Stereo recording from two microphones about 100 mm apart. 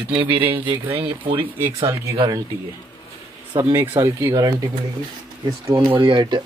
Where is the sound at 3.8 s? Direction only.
20° right (ahead or behind).